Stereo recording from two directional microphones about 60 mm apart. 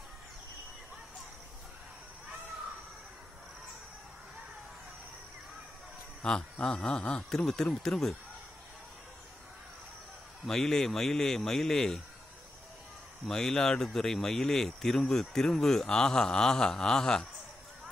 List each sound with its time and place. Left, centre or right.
6.2 s speech: centre
7.2 s speech: centre
10.4 s speech: centre
13.3 s speech: centre